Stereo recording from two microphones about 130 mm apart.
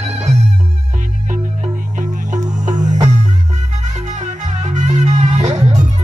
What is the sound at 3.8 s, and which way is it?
Music, 65° right (ahead or behind).